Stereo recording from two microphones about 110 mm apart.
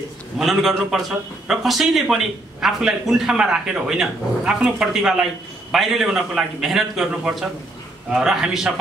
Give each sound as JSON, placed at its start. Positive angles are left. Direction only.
{"t": 0.4, "sound": "a man's voice", "side_deg": 0}